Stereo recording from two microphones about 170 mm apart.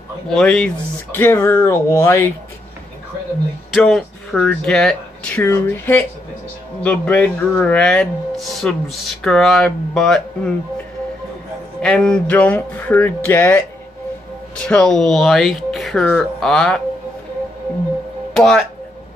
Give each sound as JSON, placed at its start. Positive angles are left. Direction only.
{"t": 0.3, "sound": "speech", "side_deg": 5}
{"t": 3.7, "sound": "speech", "side_deg": 0}
{"t": 11.8, "sound": "speech", "side_deg": 5}
{"t": 14.6, "sound": "speech", "side_deg": 5}
{"t": 18.3, "sound": "speech", "side_deg": 5}